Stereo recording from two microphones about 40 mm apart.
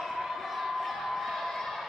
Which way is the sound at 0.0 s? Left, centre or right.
Centre.